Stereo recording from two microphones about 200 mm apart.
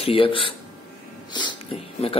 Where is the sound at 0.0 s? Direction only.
25° left (ahead or behind).